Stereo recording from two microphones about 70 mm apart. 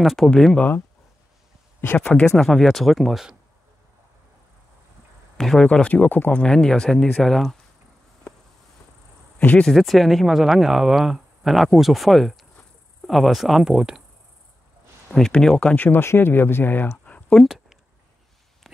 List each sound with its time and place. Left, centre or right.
0.0 s speech: centre
0.6 s speech: left
2.0 s speech: centre
5.4 s speech: centre
5.7 s speech: centre
6.4 s speech: centre
9.4 s speech: left
9.7 s speech: centre
15.1 s speech: centre
15.7 s speech: left